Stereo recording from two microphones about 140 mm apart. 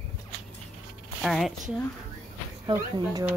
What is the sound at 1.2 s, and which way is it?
Speech, centre (ahead or behind).